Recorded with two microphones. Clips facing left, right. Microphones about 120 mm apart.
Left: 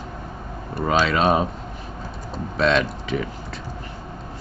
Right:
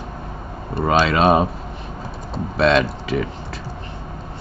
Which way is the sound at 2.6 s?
Centre (ahead or behind).